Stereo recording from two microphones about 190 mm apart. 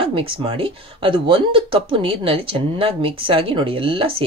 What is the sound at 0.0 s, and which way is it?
Speech, 30° right (ahead or behind).